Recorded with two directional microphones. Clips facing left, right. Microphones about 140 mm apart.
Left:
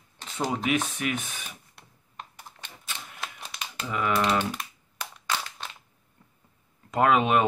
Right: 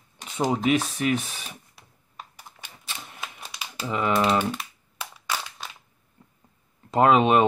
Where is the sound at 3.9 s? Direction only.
25° right (ahead or behind).